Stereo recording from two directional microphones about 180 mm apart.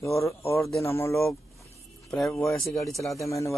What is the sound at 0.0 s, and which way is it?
Speech, 15° left (ahead or behind).